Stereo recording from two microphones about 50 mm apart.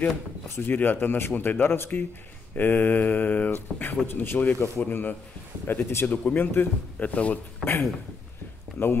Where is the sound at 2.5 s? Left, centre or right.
Left.